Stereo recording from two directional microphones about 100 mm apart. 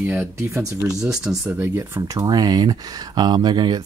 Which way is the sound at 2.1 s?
40° right (ahead or behind).